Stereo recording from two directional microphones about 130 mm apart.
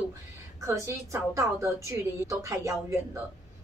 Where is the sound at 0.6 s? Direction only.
25° right (ahead or behind).